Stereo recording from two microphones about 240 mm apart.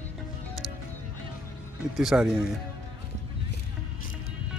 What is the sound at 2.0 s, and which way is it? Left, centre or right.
Speech, centre.